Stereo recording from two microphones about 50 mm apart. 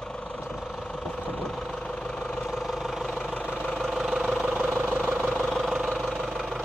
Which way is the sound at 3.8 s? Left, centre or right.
Centre.